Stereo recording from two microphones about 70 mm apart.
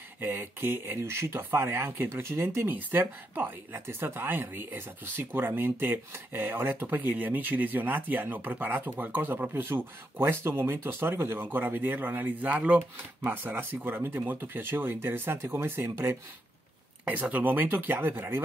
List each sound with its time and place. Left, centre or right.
0.2 s speech: right
17.0 s speech: right